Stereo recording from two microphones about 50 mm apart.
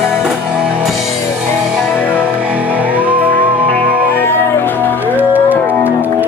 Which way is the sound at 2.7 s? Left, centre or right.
Right.